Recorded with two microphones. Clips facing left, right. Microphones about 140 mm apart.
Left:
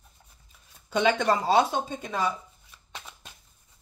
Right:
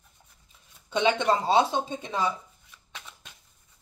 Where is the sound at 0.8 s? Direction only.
25° right (ahead or behind).